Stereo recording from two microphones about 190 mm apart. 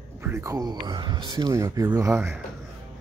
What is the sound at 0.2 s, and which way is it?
Speech, 15° right (ahead or behind).